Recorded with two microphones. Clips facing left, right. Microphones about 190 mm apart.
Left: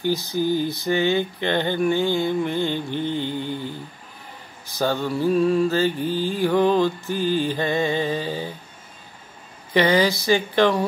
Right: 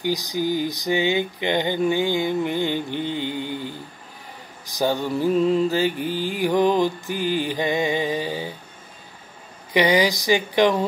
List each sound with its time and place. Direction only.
0.0 s mantra: 15° right (ahead or behind)
9.8 s mantra: 15° right (ahead or behind)